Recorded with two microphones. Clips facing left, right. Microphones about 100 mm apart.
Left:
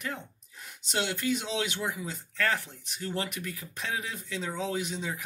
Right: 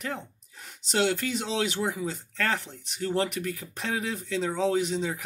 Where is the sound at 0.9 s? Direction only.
45° right (ahead or behind).